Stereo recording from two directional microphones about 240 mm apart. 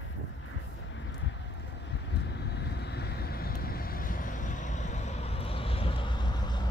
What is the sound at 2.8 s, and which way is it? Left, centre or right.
Vehicle, left.